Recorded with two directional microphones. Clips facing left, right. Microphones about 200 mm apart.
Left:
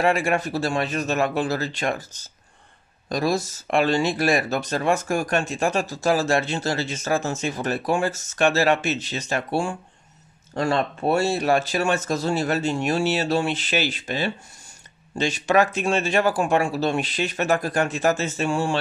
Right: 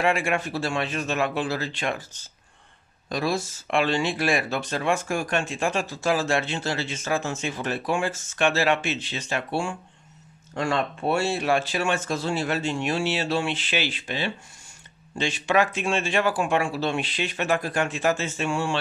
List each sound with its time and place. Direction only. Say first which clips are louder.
0.0 s speech: left 3 dB; 40° left (ahead or behind)